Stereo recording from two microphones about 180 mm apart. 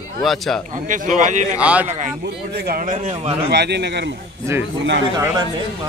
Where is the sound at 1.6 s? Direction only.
5° right (ahead or behind).